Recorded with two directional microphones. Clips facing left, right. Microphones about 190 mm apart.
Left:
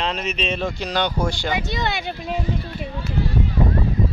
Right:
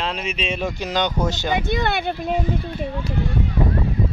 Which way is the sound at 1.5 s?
55° right (ahead or behind).